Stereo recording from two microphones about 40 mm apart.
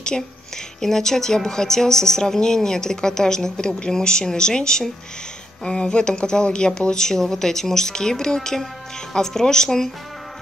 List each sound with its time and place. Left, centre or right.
0.1 s speech: centre